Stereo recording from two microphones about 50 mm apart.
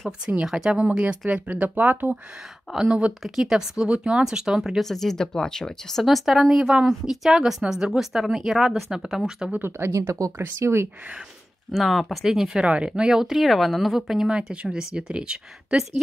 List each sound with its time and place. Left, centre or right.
0.4 s speech: centre
0.7 s speech: right
1.5 s speech: right
2.7 s speech: centre
6.0 s speech: centre
6.6 s speech: centre
9.6 s speech: right
11.7 s speech: centre
12.5 s speech: right; by 14.3 s centre
14.3 s speech: right